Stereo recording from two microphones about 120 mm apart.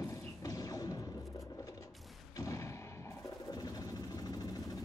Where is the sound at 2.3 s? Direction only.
25° left (ahead or behind).